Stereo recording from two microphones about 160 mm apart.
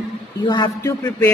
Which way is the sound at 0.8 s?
15° left (ahead or behind).